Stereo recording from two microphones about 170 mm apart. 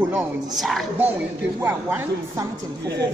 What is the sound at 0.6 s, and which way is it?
Speech, centre (ahead or behind).